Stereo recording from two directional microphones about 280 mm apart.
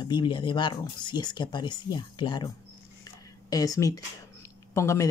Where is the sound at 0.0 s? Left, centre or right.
Centre.